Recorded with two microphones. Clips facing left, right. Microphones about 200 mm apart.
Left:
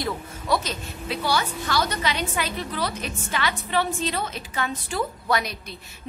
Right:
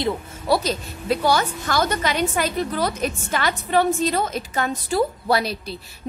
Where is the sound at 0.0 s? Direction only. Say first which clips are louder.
Right 5 dB; 35° right (ahead or behind).